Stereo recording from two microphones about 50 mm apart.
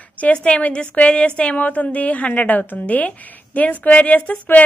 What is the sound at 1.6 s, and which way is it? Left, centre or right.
A woman's voice, left.